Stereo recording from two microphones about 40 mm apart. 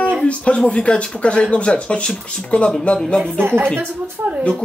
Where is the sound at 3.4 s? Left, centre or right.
Right.